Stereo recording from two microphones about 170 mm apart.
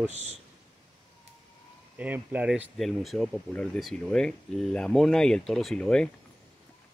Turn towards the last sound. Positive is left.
turn(degrees=5)  # may be behind; listen again after turning